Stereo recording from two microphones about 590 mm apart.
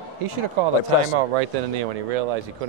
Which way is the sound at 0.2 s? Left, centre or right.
Right.